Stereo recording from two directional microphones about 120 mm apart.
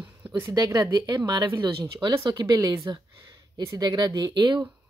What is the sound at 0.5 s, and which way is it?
Speech, 30° right (ahead or behind).